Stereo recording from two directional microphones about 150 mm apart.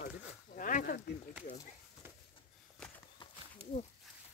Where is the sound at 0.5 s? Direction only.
65° left (ahead or behind).